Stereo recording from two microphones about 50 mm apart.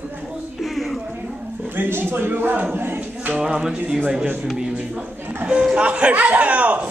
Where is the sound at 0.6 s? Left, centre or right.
Centre.